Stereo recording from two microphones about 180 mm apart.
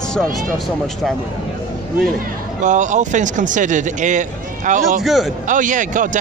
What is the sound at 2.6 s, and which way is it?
Speech, 45° right (ahead or behind).